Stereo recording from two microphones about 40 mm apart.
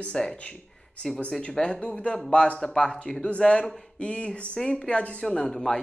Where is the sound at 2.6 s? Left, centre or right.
Centre.